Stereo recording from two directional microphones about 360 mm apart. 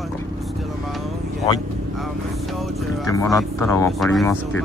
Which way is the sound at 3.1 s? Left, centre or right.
Centre.